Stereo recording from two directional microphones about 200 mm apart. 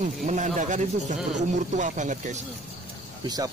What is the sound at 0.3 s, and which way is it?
Speech, 40° right (ahead or behind).